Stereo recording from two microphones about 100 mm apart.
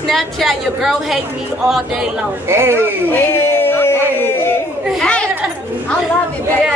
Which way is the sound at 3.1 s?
25° left (ahead or behind).